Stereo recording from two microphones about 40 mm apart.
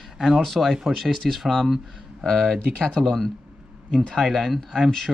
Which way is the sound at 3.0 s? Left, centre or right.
Centre.